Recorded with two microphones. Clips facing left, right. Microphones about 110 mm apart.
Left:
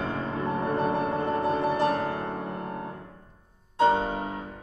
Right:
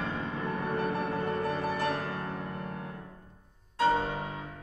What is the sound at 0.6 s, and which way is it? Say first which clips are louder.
Music: left 5 dB; 20° left (ahead or behind).